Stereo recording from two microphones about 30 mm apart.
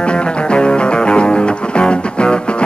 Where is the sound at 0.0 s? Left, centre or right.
Left.